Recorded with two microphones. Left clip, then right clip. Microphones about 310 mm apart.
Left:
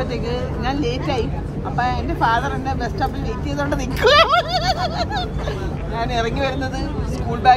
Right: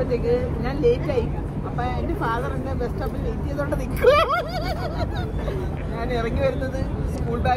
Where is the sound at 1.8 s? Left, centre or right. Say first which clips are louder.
Left 7 dB; left.